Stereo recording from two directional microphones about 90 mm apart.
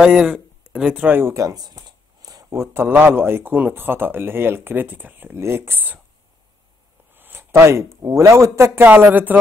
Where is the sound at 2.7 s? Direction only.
25° right (ahead or behind).